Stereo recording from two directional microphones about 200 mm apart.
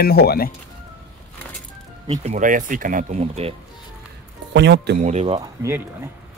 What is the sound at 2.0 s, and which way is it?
Speech, 35° right (ahead or behind).